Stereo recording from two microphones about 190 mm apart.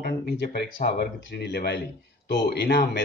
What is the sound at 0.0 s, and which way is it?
Speech, 55° left (ahead or behind).